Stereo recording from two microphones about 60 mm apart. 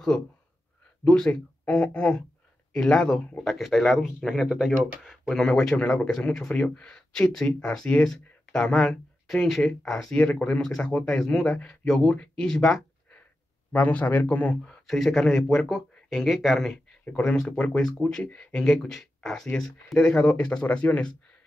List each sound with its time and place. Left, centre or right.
1.0 s speech: centre
4.5 s speech: centre
10.1 s speech: left
13.7 s speech: left
14.9 s speech: centre